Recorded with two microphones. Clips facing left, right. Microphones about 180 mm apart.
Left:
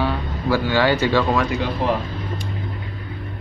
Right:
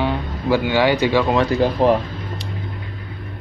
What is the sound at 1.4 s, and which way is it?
Speech, 40° right (ahead or behind).